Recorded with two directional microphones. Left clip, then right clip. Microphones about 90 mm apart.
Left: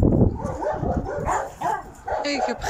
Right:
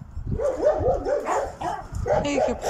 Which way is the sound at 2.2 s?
40° right (ahead or behind).